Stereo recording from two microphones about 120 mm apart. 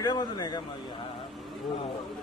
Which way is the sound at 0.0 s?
35° left (ahead or behind).